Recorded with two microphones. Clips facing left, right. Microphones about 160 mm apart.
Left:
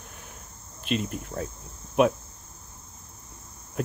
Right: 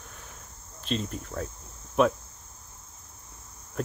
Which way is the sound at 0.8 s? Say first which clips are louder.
Left 2 dB; 10° left (ahead or behind).